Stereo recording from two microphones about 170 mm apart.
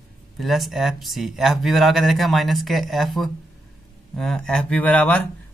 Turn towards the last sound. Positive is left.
turn(degrees=10)  # may be behind; listen again after turning